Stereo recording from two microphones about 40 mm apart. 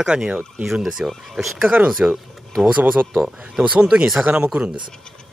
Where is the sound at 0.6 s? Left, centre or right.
Centre.